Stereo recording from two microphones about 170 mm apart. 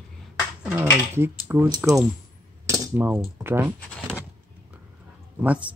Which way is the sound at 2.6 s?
10° right (ahead or behind).